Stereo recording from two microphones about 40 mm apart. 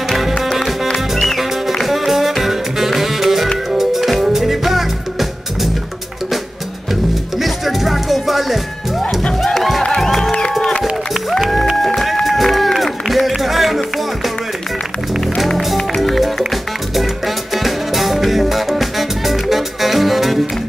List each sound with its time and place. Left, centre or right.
0.4 s music: centre
7.3 s music: centre
9.8 s music: centre
10.8 s music: centre
15.3 s music: centre